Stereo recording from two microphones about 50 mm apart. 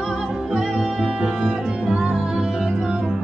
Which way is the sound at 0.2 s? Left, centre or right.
Centre.